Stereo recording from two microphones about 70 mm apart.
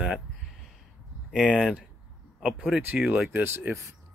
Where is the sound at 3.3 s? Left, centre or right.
Right.